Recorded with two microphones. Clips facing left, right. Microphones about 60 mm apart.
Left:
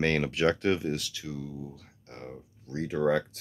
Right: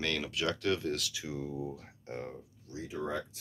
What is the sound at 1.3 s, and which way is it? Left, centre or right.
Speech, right.